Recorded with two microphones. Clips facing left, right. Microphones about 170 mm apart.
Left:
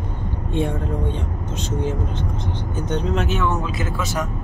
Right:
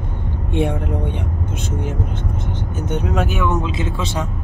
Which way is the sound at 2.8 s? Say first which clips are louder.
Right 2 dB; 10° right (ahead or behind).